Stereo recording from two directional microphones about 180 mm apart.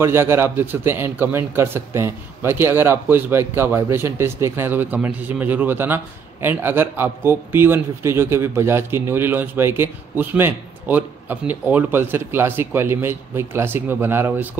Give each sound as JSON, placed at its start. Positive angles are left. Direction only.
{"t": 0.0, "sound": "a man's voice", "side_deg": -15}